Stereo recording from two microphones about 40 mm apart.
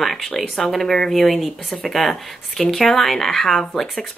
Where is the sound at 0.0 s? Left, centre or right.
Centre.